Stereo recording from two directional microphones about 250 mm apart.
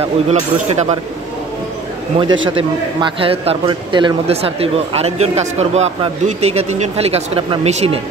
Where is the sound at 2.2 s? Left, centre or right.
Right.